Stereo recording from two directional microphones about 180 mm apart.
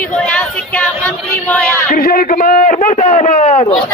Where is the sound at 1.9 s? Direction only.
55° left (ahead or behind); by 3.8 s 35° left (ahead or behind).